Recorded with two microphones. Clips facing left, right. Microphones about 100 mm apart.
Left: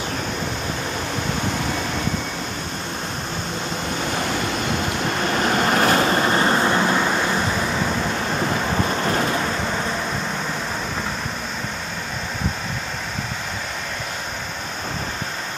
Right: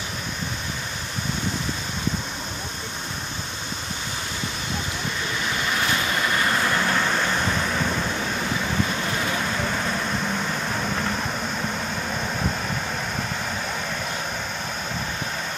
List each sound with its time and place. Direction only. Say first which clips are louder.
5.0 s vehicle: left 9 dB; 60° left (ahead or behind); by 7.1 s 20° left (ahead or behind)